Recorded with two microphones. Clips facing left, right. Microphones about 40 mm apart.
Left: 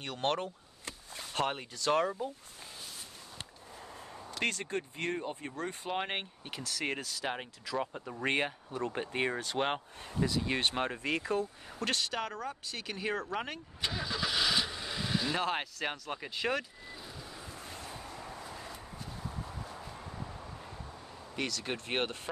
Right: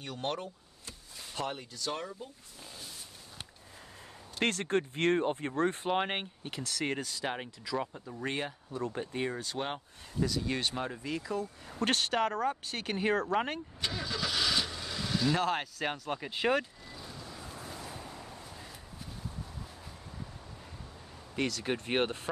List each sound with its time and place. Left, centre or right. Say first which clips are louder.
0.0 s speech: left 3 dB; left
1.9 s speech: left 9 dB; left
4.5 s speech: right 6 dB; right
5.9 s speech: right 4 dB; centre
8.1 s speech: left 6 dB; left
10.2 s speech: even; left
10.6 s speech: left 3 dB; left
11.8 s speech: right 5 dB; right
13.7 s vehicle: left 3 dB; centre
15.8 s speech: right 2 dB; centre
16.3 s speech: right 4 dB; right
16.9 s vehicle: right 1 dB; centre
18.3 s vehicle: left 3 dB; left
21.4 s speech: right 3 dB; centre